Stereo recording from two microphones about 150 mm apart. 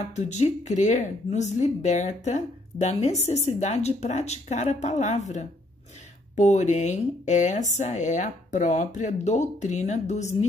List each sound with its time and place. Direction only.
0.1 s speech: 50° left (ahead or behind)